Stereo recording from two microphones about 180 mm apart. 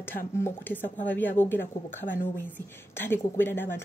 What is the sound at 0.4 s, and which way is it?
Speech, 10° left (ahead or behind).